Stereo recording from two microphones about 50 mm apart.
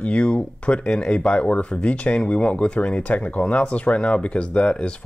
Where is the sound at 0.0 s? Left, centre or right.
Left.